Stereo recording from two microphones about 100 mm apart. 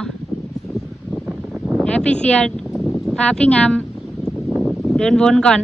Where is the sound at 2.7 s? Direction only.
Centre (ahead or behind).